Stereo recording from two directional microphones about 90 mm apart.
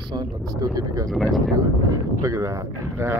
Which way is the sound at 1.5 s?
35° right (ahead or behind).